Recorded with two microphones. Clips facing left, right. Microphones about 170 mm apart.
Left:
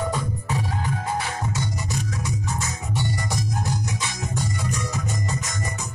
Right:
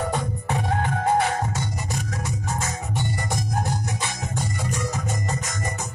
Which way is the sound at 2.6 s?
50° right (ahead or behind).